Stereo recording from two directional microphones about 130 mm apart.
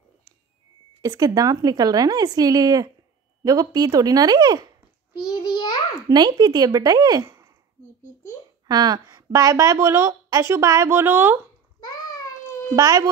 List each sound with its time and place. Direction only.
1.0 s a woman's voice: 30° right (ahead or behind)
5.3 s a sound: 35° left (ahead or behind)
6.0 s a woman's voice: 35° right (ahead or behind)
8.6 s a woman's voice: 30° right (ahead or behind)
12.7 s a woman's voice: 30° right (ahead or behind)